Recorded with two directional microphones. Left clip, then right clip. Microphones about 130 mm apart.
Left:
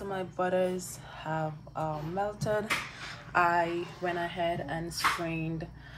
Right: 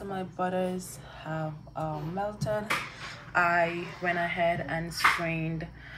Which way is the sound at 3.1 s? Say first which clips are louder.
Even; centre (ahead or behind).